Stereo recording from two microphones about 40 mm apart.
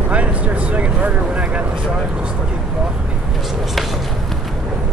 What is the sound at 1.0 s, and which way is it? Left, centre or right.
Vehicle, right.